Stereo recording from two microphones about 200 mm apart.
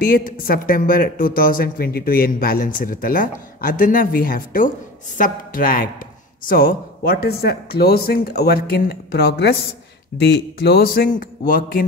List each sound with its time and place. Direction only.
0.0 s speech: 45° left (ahead or behind)